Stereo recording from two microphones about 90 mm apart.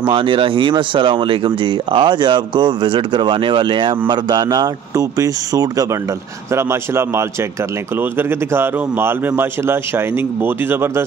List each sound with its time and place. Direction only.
0.0 s speech: 70° right (ahead or behind)
4.1 s speech: 50° right (ahead or behind)
6.5 s a man's voice: 30° right (ahead or behind)